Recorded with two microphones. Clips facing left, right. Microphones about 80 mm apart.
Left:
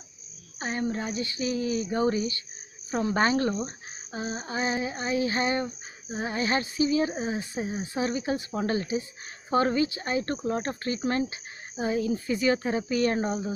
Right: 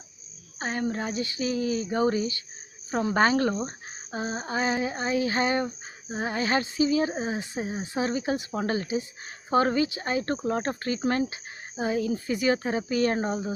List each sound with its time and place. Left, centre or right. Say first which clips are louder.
0.6 s speech: right 1 dB; right